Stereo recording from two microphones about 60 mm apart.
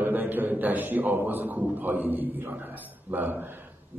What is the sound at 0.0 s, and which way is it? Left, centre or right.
A man's voice, right.